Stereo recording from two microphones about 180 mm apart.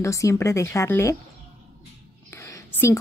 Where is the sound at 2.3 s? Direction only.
15° left (ahead or behind).